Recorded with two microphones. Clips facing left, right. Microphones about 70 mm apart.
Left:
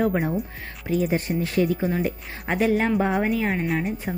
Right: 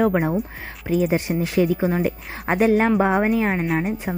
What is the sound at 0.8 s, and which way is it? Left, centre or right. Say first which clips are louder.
Speech: right 3 dB; right.